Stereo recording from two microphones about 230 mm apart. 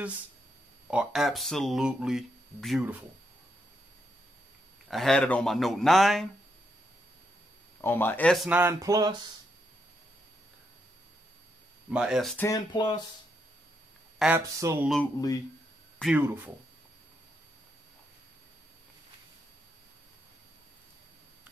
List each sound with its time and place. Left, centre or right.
0.8 s speech: centre
4.8 s speech: centre
7.8 s speech: centre
11.9 s speech: centre
12.4 s speech: centre
14.1 s speech: centre
16.0 s speech: centre